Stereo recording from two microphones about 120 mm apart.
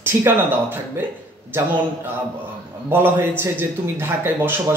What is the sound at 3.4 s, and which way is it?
Speech, 20° right (ahead or behind).